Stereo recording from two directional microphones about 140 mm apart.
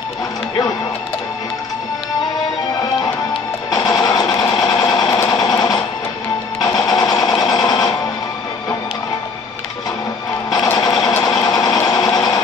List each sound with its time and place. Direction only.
3.7 s music: 30° left (ahead or behind)
4.7 s sewing machine: 30° left (ahead or behind)
6.9 s sewing machine: 30° left (ahead or behind)
10.5 s music: 30° left (ahead or behind)
10.9 s sewing machine: 30° left (ahead or behind)